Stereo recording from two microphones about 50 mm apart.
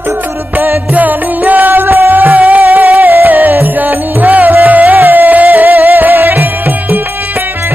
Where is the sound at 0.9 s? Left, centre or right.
Right.